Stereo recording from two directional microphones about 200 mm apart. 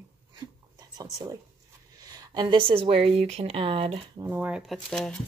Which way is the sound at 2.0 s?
20° right (ahead or behind).